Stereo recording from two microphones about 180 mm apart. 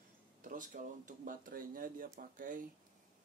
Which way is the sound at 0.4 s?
50° right (ahead or behind).